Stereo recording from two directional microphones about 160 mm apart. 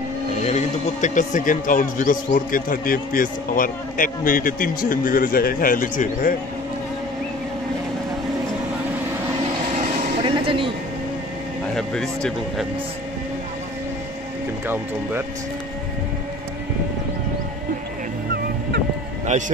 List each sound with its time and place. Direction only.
0.5 s a man's voice: 45° left (ahead or behind)
10.1 s a sound: 35° right (ahead or behind)
11.7 s speech: 5° left (ahead or behind)
19.3 s speech: 45° right (ahead or behind)